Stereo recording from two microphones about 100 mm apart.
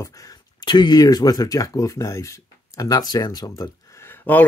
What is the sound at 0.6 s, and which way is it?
Speech, 50° left (ahead or behind).